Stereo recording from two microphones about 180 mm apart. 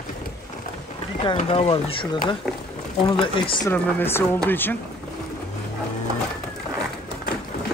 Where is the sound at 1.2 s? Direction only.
30° left (ahead or behind).